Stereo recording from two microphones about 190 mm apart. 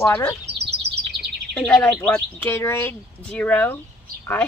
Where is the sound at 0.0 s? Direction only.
15° left (ahead or behind).